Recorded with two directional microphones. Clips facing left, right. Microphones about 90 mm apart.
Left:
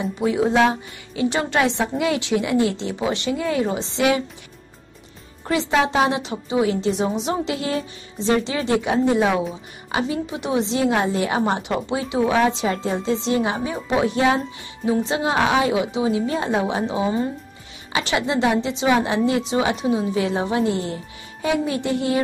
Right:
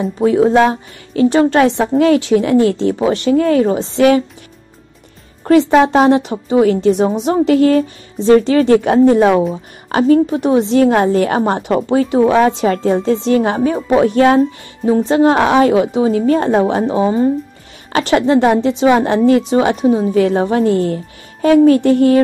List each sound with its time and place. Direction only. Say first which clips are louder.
0.0 s a woman's voice: right 8 dB; 40° right (ahead or behind)
5.5 s a woman's voice: right 10 dB; 45° right (ahead or behind)